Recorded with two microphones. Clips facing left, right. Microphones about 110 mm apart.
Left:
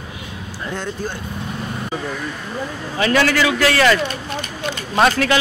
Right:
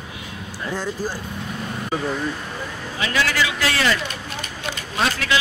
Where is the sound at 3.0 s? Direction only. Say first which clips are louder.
Left 6 dB; 50° left (ahead or behind).